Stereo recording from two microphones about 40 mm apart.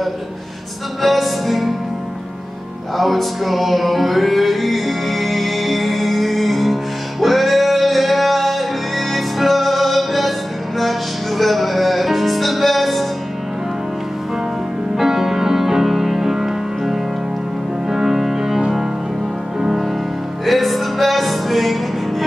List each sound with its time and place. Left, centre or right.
1.0 s music: centre
3.0 s music: centre
15.0 s music: centre
20.4 s music: centre